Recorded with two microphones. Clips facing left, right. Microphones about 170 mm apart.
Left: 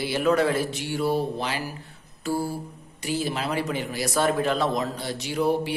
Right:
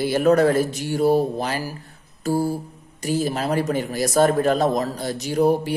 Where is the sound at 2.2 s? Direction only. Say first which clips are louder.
Right 5 dB; 40° right (ahead or behind).